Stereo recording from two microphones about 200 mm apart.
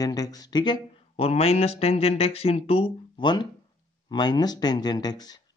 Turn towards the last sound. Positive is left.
turn(degrees=20)  # may be behind; listen again after turning